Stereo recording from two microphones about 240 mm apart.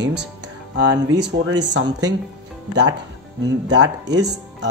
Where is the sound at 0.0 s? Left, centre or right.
Right.